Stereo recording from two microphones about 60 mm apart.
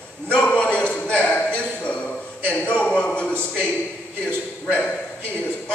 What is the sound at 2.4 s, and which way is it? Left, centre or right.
A man's voice, left.